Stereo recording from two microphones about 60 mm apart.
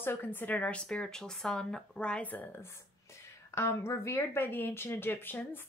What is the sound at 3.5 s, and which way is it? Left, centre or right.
Speech, left.